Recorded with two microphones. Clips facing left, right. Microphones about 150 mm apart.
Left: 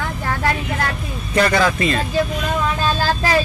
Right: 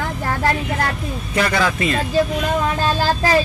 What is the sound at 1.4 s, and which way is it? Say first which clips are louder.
Speech: left 3 dB; 5° right (ahead or behind).